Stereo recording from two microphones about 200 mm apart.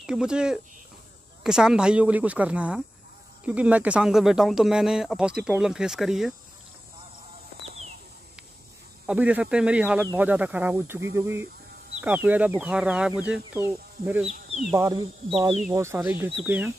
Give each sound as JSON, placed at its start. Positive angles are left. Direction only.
{"t": 0.0, "sound": "speech", "side_deg": -5}
{"t": 7.6, "sound": "a sound", "side_deg": -30}
{"t": 9.0, "sound": "speech", "side_deg": -5}